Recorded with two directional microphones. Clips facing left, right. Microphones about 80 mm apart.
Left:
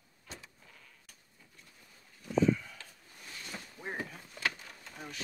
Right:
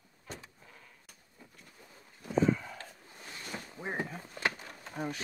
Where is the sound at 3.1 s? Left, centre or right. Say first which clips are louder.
Right 2 dB; right.